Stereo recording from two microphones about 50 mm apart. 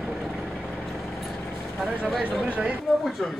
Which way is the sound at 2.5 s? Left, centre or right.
Right.